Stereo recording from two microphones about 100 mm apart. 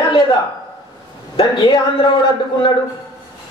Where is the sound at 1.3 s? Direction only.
50° left (ahead or behind).